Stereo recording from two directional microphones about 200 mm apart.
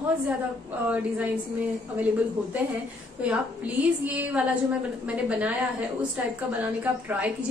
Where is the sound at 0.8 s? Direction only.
5° right (ahead or behind).